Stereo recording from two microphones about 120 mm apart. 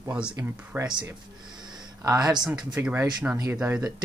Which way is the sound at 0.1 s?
10° right (ahead or behind).